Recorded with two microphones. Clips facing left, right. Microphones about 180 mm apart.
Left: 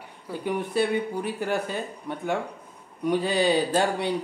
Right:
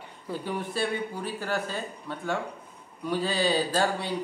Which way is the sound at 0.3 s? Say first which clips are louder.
Left 4 dB; 15° left (ahead or behind).